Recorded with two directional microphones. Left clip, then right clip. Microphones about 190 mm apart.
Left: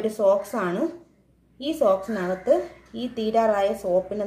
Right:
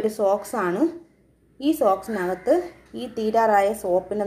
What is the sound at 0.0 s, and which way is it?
A woman's voice, 25° right (ahead or behind).